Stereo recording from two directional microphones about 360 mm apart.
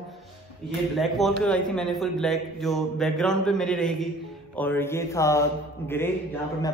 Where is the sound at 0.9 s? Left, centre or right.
Centre.